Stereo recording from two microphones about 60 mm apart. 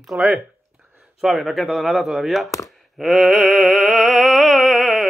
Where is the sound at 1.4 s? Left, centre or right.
Centre.